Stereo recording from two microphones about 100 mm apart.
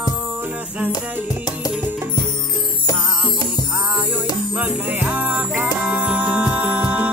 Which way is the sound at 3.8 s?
10° right (ahead or behind).